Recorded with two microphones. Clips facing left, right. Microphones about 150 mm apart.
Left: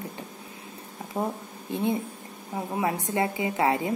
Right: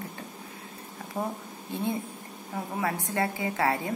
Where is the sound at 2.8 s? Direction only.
20° left (ahead or behind).